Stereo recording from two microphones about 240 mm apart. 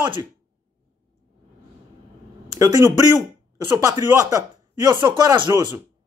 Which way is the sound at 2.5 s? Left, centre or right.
Centre.